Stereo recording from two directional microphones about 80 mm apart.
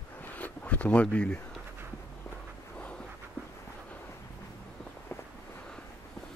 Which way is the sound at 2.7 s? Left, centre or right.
Centre.